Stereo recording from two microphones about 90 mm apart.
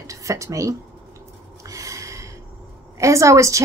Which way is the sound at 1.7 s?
35° right (ahead or behind).